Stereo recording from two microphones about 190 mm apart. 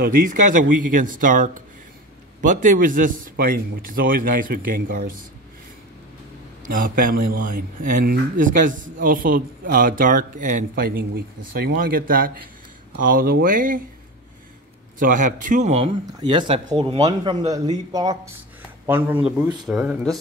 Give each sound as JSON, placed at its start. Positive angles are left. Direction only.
{"t": 0.0, "sound": "speech", "side_deg": -45}
{"t": 6.7, "sound": "speech", "side_deg": -45}
{"t": 15.0, "sound": "speech", "side_deg": -45}
{"t": 16.1, "sound": "speech", "side_deg": -20}